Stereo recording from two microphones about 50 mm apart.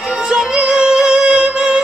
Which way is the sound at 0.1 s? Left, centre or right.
Centre.